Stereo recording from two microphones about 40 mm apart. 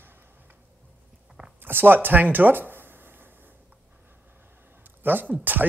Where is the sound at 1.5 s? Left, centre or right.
Right.